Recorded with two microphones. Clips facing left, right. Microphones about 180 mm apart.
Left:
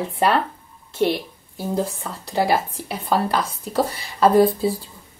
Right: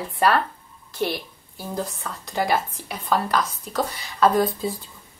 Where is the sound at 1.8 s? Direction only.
30° left (ahead or behind).